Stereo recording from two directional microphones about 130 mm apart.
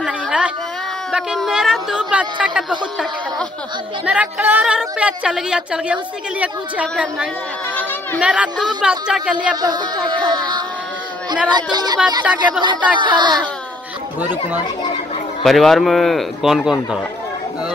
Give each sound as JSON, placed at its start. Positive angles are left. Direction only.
{"t": 0.0, "sound": "a sound", "side_deg": -5}
{"t": 1.1, "sound": "speech", "side_deg": -5}
{"t": 4.0, "sound": "a woman's voice", "side_deg": -10}
{"t": 9.6, "sound": "speech", "side_deg": -35}
{"t": 15.4, "sound": "speech", "side_deg": 0}